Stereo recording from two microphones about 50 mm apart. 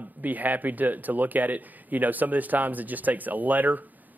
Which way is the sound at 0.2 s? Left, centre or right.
Right.